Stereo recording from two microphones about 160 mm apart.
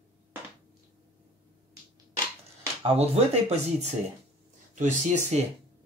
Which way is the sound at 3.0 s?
40° right (ahead or behind).